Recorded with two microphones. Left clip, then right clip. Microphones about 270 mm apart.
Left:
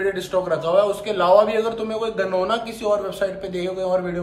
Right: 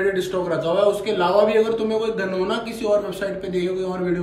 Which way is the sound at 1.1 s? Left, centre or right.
Centre.